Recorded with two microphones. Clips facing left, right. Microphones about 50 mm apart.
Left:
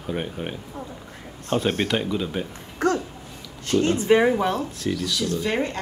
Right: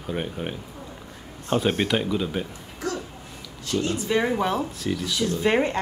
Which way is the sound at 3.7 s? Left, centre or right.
Left.